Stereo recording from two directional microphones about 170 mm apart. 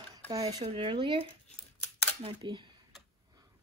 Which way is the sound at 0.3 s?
20° right (ahead or behind).